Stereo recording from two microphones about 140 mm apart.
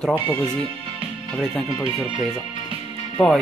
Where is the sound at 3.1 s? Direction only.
5° left (ahead or behind).